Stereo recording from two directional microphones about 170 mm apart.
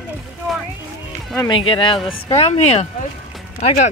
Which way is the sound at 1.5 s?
30° left (ahead or behind).